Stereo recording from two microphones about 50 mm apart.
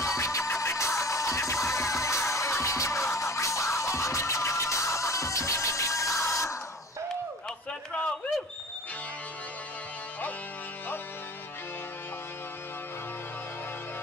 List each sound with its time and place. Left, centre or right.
0.0 s music: left